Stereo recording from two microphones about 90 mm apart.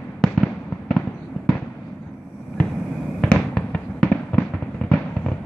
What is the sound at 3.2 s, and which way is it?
Fireworks, 10° left (ahead or behind).